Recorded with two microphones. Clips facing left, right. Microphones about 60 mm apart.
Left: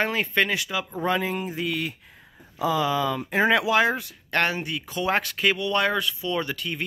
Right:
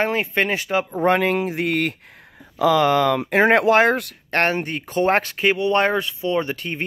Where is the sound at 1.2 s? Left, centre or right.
Right.